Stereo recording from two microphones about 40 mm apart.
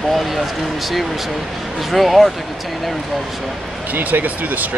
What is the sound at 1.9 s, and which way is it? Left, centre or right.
Speech, centre.